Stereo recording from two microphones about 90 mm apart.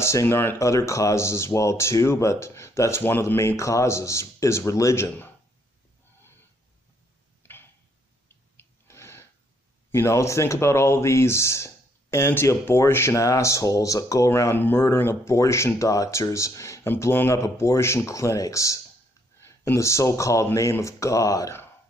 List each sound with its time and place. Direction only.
0.0 s speech: 30° left (ahead or behind)
7.4 s tick-tock: 25° left (ahead or behind)
8.5 s a sound: 30° left (ahead or behind)
9.8 s speech: 30° left (ahead or behind)
14.3 s speech: 25° left (ahead or behind)